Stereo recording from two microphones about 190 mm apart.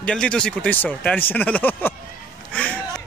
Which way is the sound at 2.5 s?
5° left (ahead or behind).